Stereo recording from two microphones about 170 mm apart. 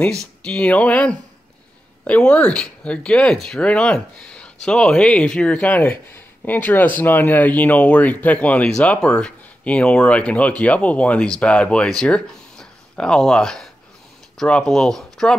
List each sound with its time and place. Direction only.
0.2 s speech: 5° left (ahead or behind)